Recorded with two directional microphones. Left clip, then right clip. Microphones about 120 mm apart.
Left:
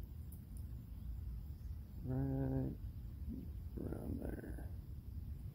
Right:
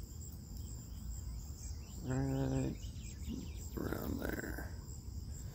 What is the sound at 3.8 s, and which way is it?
Cricket, 25° right (ahead or behind).